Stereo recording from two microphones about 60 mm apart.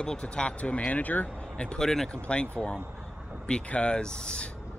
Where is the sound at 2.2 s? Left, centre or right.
Left.